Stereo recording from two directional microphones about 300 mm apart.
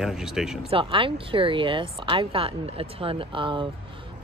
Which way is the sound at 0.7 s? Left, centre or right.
Centre.